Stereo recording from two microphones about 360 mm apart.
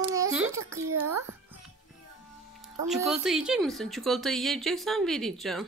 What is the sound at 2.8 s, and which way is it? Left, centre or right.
Speech, centre.